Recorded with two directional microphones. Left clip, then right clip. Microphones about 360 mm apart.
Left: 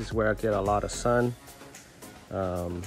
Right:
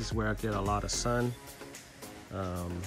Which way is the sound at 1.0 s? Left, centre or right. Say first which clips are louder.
Left 9 dB; left.